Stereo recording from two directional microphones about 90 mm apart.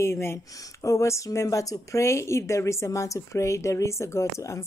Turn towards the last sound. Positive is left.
turn(degrees=35)  # may be behind; listen again after turning